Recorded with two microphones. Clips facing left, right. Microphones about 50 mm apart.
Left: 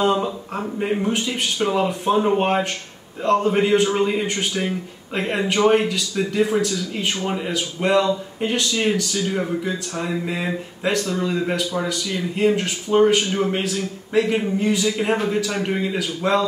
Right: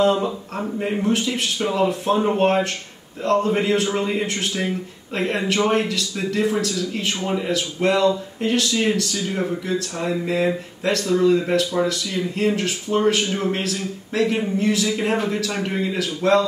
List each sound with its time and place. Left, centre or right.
0.2 s a man's voice: centre
1.0 s speech: centre